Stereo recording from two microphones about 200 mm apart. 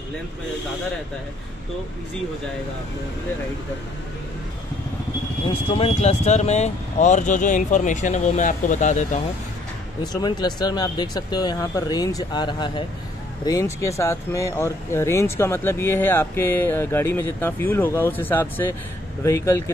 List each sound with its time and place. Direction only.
5.5 s speech: 30° left (ahead or behind)
10.2 s speech: 20° left (ahead or behind)